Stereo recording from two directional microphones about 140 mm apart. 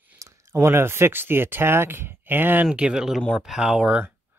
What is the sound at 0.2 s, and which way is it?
Speech, 20° right (ahead or behind).